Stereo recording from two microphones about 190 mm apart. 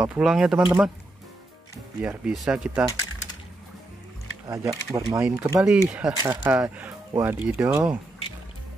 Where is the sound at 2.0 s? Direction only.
5° right (ahead or behind).